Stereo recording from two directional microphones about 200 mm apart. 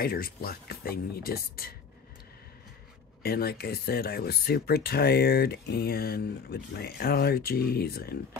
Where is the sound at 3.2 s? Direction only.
50° left (ahead or behind).